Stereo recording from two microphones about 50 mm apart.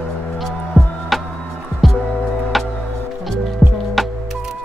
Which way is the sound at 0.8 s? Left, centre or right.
Left.